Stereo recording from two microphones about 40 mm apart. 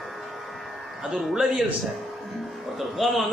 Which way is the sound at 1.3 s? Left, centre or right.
Centre.